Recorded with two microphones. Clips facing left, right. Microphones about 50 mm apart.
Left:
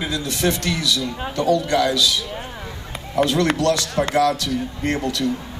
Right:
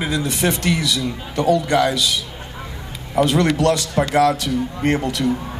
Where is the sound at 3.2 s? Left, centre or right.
Right.